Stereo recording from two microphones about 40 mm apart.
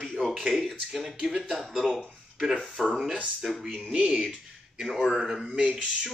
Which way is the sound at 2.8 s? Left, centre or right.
Centre.